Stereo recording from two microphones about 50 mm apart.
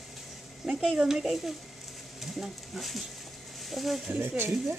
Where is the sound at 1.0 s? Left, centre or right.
Centre.